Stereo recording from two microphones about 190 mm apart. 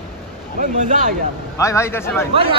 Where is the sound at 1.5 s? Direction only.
15° left (ahead or behind).